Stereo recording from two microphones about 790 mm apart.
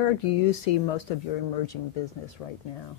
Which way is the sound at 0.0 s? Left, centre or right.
Left.